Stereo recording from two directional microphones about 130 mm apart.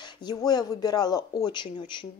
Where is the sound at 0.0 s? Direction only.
35° left (ahead or behind).